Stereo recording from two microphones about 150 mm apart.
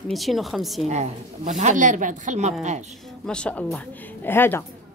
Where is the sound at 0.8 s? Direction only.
50° right (ahead or behind).